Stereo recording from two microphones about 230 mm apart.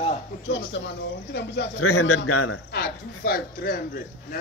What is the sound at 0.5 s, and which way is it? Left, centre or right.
A man's voice, left.